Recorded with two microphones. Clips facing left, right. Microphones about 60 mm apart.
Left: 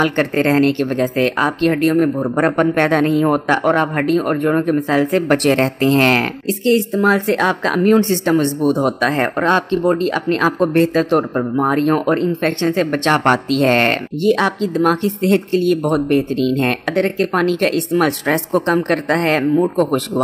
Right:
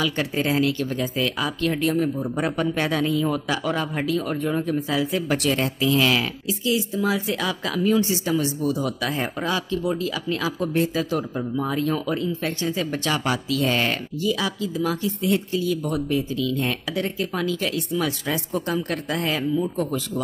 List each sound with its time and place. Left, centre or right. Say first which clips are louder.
0.0 s speech: left 8 dB; left